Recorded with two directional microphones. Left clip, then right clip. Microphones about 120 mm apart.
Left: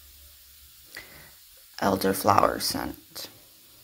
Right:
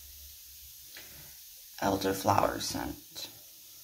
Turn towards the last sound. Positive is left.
turn(degrees=30)  # may be behind; listen again after turning